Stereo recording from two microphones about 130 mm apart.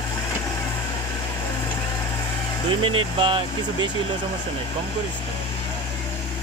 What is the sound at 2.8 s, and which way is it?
Speech, 45° right (ahead or behind).